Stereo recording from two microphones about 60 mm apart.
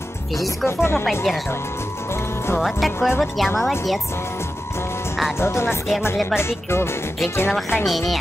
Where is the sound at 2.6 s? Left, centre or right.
Centre.